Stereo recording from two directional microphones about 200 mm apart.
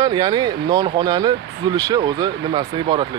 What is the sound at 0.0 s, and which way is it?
Speech, 20° right (ahead or behind).